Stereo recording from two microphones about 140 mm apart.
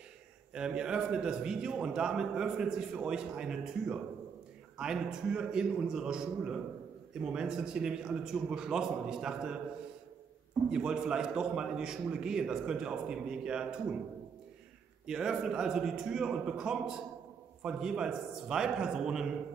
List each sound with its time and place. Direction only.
0.6 s a man's voice: 5° right (ahead or behind)
10.7 s a man's voice: 5° right (ahead or behind)
15.0 s a man's voice: 5° right (ahead or behind)